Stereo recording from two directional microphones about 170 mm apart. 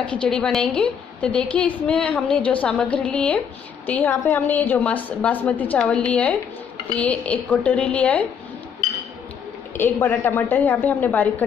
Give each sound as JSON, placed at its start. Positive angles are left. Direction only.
{"t": 0.0, "sound": "a woman's voice", "side_deg": 5}
{"t": 9.8, "sound": "a woman's voice", "side_deg": 15}